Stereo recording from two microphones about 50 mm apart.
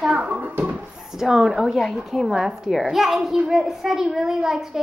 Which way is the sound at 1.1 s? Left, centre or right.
Centre.